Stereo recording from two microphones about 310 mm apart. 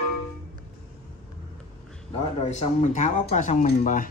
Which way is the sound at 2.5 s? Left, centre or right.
Left.